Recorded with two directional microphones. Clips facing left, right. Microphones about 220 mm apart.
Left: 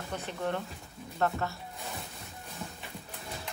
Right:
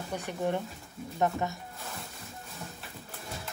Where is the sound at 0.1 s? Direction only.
15° right (ahead or behind).